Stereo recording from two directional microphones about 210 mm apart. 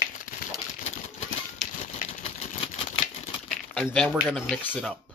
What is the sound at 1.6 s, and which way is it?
Typewriter, 35° left (ahead or behind).